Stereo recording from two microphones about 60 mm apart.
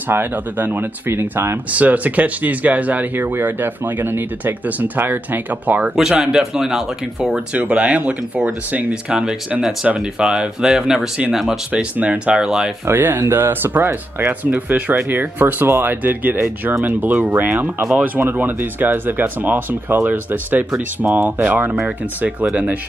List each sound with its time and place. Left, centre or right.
0.1 s speech: right
1.7 s speech: right
4.6 s speech: right
6.1 s speech: centre
7.5 s speech: right
9.1 s speech: centre
11.7 s speech: right
12.4 s speech: centre
12.8 s speech: right